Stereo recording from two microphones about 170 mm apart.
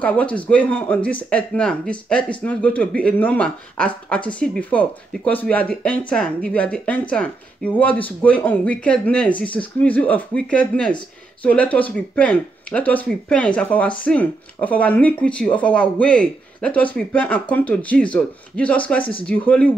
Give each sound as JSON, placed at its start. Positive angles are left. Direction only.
{"t": 0.0, "sound": "speech", "side_deg": 10}